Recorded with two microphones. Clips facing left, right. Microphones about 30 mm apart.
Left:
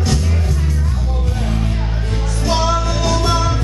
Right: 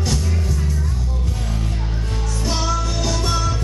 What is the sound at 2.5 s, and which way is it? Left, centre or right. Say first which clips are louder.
Music: left 6 dB; left.